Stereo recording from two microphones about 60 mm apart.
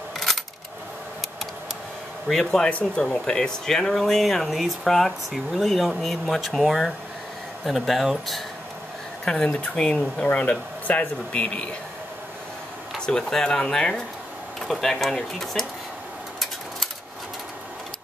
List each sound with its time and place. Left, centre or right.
2.2 s speech: centre
9.2 s speech: centre
12.9 s speech: centre